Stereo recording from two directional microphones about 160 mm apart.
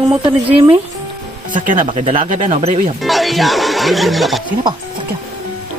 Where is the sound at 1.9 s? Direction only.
35° right (ahead or behind).